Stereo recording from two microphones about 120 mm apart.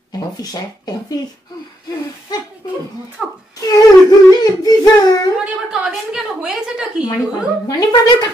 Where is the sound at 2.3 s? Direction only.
35° left (ahead or behind).